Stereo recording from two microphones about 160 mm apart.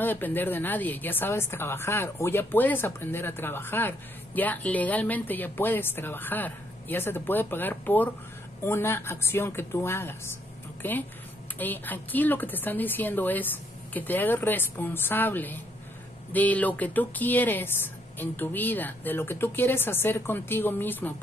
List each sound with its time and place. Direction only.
0.0 s speech: 10° left (ahead or behind)